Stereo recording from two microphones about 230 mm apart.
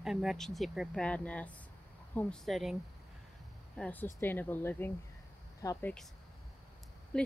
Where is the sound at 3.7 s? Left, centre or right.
Centre.